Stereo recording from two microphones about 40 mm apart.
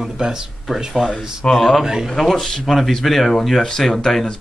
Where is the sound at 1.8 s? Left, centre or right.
Centre.